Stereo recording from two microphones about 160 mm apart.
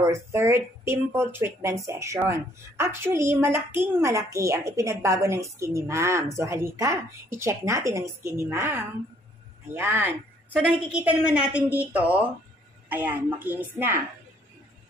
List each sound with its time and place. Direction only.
0.0 s a woman's voice: 15° right (ahead or behind)